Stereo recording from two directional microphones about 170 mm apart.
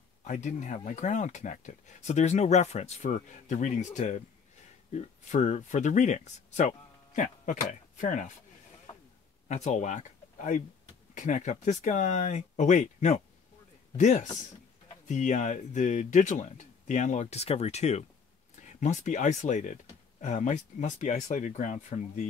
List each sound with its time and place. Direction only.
0.2 s speech: 45° left (ahead or behind)
9.5 s speech: 45° left (ahead or behind)